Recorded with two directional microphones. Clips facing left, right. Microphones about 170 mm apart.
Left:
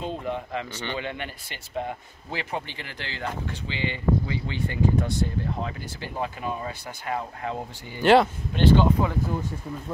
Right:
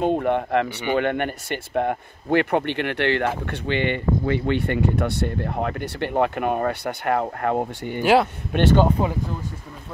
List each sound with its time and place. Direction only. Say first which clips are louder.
0.0 s speech: right 10 dB; 60° right (ahead or behind)
8.0 s speech: even; 5° right (ahead or behind)
8.5 s speech: right 2 dB; 60° right (ahead or behind)
9.0 s speech: right 2 dB; 25° right (ahead or behind)